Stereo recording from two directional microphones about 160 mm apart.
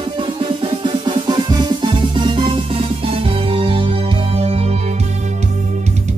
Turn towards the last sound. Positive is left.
turn(degrees=-40)  # may be behind; listen again after turning